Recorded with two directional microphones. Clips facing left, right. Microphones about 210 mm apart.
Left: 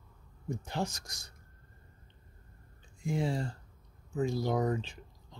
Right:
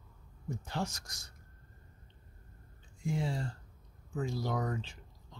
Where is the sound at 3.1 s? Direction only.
15° left (ahead or behind).